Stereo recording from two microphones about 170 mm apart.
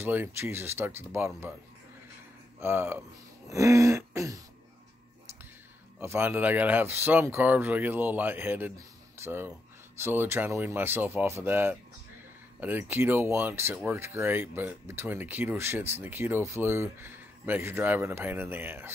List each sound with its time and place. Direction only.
0.0 s speech: 10° right (ahead or behind)
2.6 s speech: 15° right (ahead or behind)
3.4 s throat clearing: 20° right (ahead or behind)
5.9 s speech: 10° right (ahead or behind)